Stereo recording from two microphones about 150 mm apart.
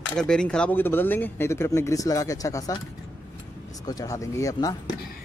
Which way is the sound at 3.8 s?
25° left (ahead or behind).